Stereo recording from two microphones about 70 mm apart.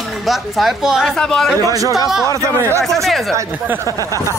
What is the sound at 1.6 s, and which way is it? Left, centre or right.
Speech, right.